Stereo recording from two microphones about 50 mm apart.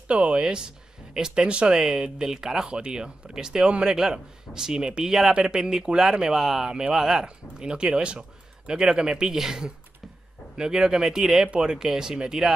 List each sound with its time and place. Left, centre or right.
0.1 s speech: right
0.4 s speech: centre